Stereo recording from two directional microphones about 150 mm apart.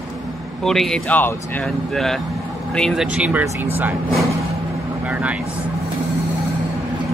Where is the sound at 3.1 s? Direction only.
10° right (ahead or behind).